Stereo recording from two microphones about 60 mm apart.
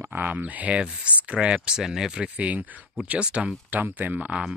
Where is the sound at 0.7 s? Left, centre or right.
Centre.